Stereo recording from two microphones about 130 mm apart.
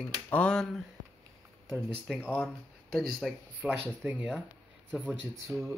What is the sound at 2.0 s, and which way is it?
Speech, 5° right (ahead or behind).